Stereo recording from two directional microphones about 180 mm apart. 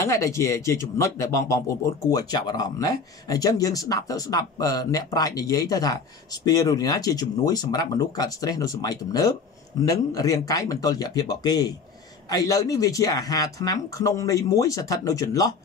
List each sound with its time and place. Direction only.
0.0 s speech: 15° left (ahead or behind)